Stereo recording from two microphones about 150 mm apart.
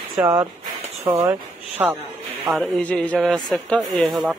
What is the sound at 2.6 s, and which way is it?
A man's voice, 5° left (ahead or behind).